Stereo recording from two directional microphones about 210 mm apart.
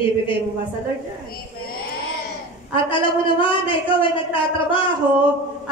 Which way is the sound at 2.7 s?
25° left (ahead or behind).